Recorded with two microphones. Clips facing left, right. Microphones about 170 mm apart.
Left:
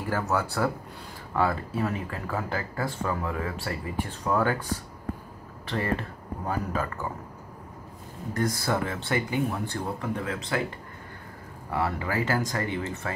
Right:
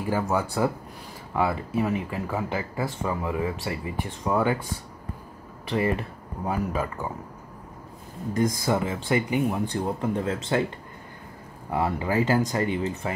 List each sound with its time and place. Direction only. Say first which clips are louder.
0.0 s speech: right 2 dB; 15° right (ahead or behind)
5.7 s speech: right 4 dB; 15° right (ahead or behind)
8.3 s speech: right 3 dB; 15° right (ahead or behind)
11.7 s speech: right 3 dB; 20° right (ahead or behind)